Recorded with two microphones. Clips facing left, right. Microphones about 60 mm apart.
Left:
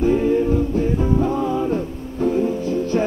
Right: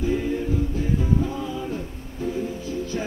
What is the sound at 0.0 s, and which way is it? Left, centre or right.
Music, left.